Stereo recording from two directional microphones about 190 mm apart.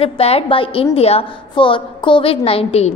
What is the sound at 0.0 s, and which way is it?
A woman's voice, 30° left (ahead or behind).